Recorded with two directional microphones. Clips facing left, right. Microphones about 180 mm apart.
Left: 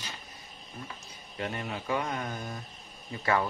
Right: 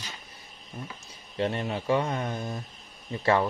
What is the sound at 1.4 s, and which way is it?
Speech, 30° right (ahead or behind).